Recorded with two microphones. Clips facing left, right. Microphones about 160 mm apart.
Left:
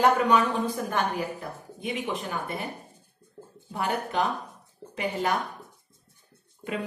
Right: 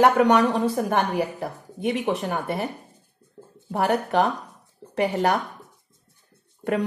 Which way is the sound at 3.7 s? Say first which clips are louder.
Right 7 dB; 70° right (ahead or behind).